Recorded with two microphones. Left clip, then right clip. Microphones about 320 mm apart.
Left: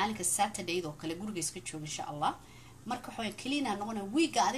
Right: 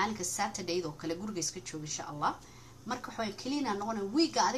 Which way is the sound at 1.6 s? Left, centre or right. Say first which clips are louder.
Right 1 dB; centre.